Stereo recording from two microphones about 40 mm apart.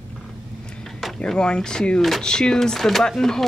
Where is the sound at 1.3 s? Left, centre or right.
Centre.